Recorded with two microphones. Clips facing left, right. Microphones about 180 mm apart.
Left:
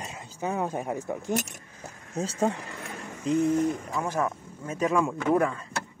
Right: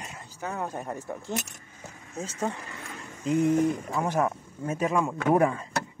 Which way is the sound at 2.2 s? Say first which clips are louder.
Left 5 dB; 30° left (ahead or behind).